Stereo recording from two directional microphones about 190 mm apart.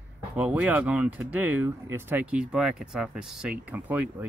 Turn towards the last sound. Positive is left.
turn(degrees=-5)  # may be behind; listen again after turning